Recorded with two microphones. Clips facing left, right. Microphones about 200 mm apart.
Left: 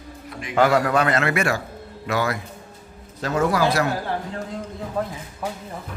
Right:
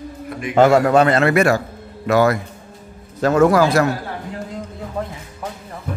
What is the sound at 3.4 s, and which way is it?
Speech, 50° right (ahead or behind).